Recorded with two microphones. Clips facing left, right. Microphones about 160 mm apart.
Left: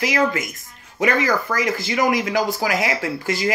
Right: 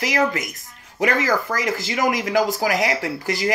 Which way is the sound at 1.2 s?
40° right (ahead or behind).